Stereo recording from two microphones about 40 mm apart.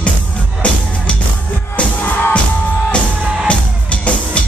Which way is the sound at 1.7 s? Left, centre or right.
Left.